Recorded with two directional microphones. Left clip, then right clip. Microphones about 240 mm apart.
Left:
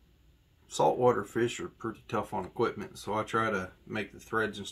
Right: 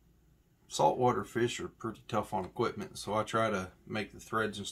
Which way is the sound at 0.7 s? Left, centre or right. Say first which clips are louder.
Left 3 dB; centre.